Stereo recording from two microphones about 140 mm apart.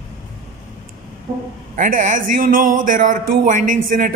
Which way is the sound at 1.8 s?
65° right (ahead or behind).